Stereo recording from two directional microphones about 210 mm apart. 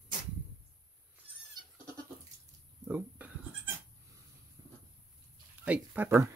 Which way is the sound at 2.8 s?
10° right (ahead or behind).